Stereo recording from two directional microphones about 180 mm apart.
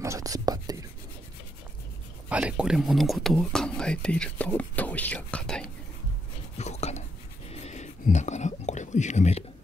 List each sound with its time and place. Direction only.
0.0 s writing: 20° right (ahead or behind)
2.2 s speech: 5° right (ahead or behind)
6.6 s whispering: 40° left (ahead or behind)